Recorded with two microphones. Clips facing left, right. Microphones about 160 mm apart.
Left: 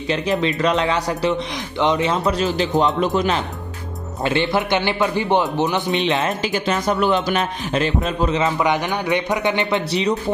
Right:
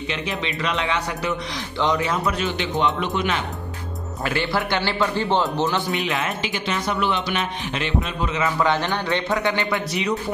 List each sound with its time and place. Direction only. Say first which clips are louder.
0.1 s a man's voice: left 10 dB; 40° left (ahead or behind)
1.8 s a man's voice: left 3 dB; 20° left (ahead or behind); by 3.4 s 35° left (ahead or behind)
4.2 s a man's voice: left 4 dB; 20° left (ahead or behind)
6.2 s a man's voice: left 5 dB; 40° left (ahead or behind)